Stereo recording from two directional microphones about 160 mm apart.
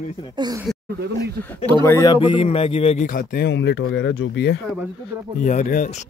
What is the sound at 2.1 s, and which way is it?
Speech, 30° left (ahead or behind).